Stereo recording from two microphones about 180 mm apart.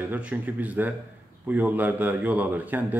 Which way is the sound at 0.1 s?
10° right (ahead or behind).